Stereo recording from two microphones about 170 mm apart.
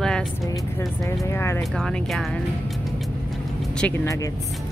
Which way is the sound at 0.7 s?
15° left (ahead or behind).